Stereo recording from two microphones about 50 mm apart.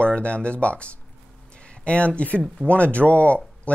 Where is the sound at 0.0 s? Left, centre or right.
Left.